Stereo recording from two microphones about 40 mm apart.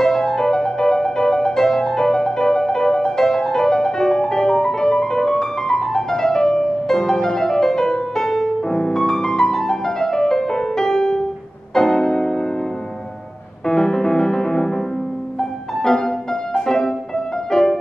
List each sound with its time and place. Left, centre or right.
0.0 s music: centre
13.7 s music: centre